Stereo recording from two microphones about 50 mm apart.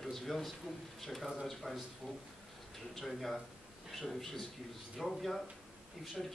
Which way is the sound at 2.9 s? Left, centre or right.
Centre.